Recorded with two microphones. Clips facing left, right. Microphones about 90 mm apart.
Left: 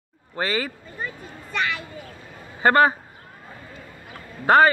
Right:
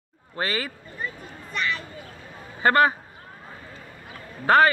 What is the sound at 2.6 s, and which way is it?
Speech, 30° left (ahead or behind).